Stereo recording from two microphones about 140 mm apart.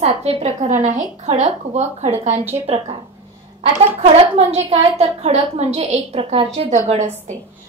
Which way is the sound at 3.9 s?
50° right (ahead or behind).